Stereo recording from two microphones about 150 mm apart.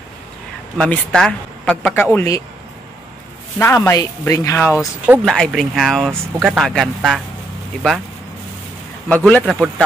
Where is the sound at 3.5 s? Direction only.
15° left (ahead or behind).